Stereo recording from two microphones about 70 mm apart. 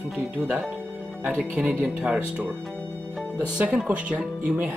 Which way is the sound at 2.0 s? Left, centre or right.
Right.